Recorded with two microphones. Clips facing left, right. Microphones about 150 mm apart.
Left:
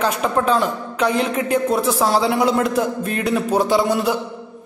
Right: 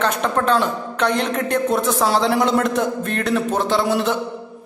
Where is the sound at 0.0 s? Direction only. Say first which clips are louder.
Left 1 dB; 5° left (ahead or behind).